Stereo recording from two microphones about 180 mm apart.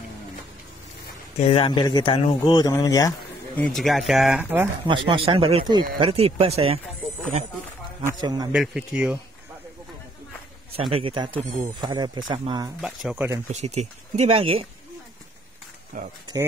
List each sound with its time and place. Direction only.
1.4 s speech: 30° left (ahead or behind)
3.5 s speech: centre (ahead or behind)
4.8 s speech: 30° right (ahead or behind)
8.0 s speech: 20° right (ahead or behind)
8.5 s speech: 5° right (ahead or behind)
10.9 s speech: 30° right (ahead or behind)
12.8 s speech: 5° right (ahead or behind)
13.5 s speech: 35° right (ahead or behind)
15.9 s speech: 50° right (ahead or behind)